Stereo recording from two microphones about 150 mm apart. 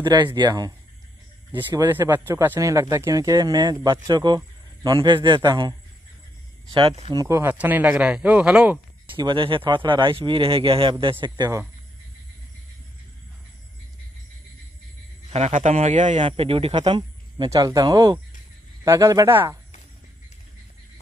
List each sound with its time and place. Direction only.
0.0 s speech: 30° right (ahead or behind)
1.5 s speech: 15° right (ahead or behind); by 7.2 s 35° right (ahead or behind)
7.2 s speech: 20° right (ahead or behind)
9.0 s speech: 35° right (ahead or behind)
15.3 s a man's voice: 50° right (ahead or behind)
16.2 s speech: 40° right (ahead or behind); by 19.5 s 20° right (ahead or behind)